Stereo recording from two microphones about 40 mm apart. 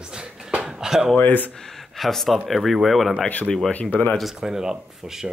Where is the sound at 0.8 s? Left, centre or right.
Centre.